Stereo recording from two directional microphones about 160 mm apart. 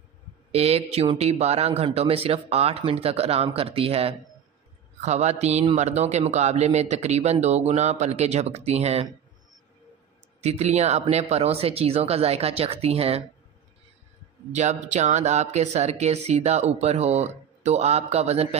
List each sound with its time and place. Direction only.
0.5 s speech: 40° right (ahead or behind)
10.4 s speech: 45° right (ahead or behind)
14.5 s speech: 45° right (ahead or behind)